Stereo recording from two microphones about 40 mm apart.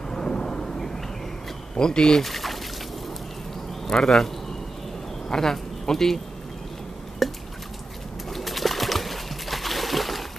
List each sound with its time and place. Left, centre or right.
0.1 s thunder: left
1.8 s speech: centre
3.9 s speech: centre
5.3 s speech: centre
7.2 s drip: centre
8.3 s bird: centre